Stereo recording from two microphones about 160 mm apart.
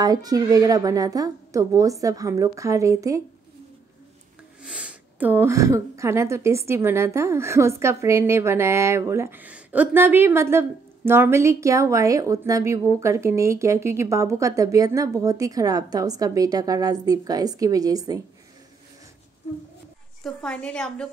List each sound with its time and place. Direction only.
0.0 s a child's voice: 25° right (ahead or behind)
4.6 s speech: 10° right (ahead or behind)
20.2 s a woman's voice: 5° left (ahead or behind)